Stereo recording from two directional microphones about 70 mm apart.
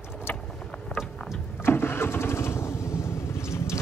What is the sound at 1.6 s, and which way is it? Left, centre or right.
Vehicle, left.